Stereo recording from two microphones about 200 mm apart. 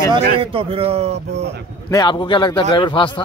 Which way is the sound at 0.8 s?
30° right (ahead or behind).